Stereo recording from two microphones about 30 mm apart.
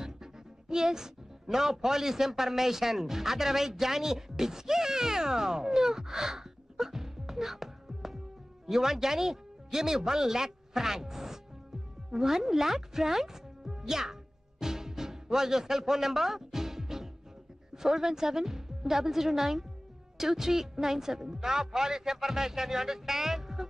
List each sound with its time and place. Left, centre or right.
0.0 s speech: right
14.6 s music: centre
17.7 s a woman's voice: centre